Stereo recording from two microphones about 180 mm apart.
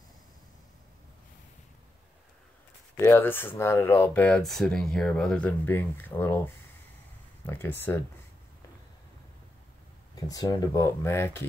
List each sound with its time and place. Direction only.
3.0 s speech: 10° left (ahead or behind)
10.2 s speech: 20° left (ahead or behind)